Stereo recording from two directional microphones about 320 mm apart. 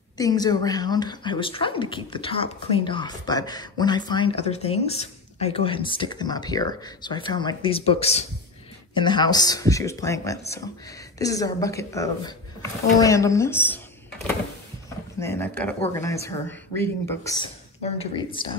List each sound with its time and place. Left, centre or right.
0.2 s a woman's voice: centre
15.1 s a woman's voice: centre